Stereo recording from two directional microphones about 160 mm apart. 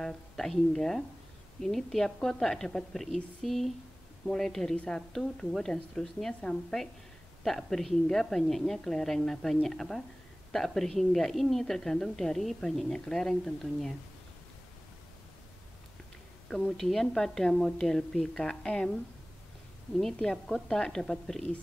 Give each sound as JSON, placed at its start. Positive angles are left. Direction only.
{"t": 0.0, "sound": "a woman's voice", "side_deg": 5}
{"t": 16.4, "sound": "a woman's voice", "side_deg": 0}
{"t": 20.0, "sound": "a woman's voice", "side_deg": 5}